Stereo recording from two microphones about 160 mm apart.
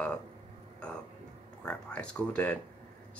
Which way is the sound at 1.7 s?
5° left (ahead or behind).